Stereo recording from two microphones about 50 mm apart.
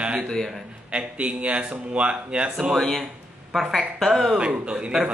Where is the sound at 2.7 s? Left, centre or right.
Centre.